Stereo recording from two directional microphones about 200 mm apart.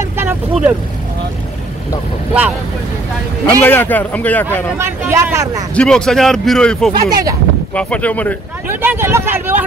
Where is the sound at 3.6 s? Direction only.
10° left (ahead or behind).